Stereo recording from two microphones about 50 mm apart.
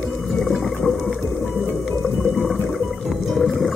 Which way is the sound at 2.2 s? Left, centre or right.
Centre.